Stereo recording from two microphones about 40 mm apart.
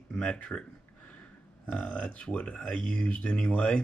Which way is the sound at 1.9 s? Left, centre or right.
Left.